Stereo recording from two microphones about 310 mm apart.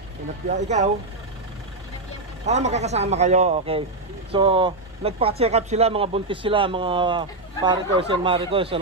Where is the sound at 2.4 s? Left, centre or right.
Right.